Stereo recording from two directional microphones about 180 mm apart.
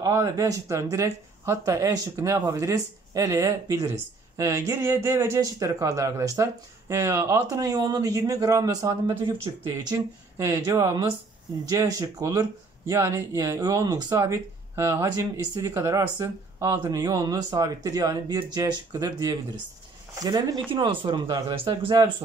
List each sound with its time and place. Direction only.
0.0 s speech: 20° right (ahead or behind)